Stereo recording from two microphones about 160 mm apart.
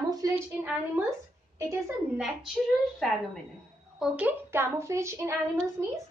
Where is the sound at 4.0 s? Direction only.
10° right (ahead or behind).